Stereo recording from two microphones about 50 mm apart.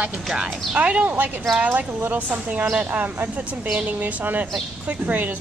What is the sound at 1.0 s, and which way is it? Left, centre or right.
A woman's voice, right.